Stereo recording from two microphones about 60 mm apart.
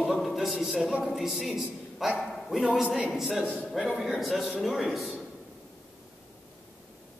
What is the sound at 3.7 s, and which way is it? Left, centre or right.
A man's voice, centre.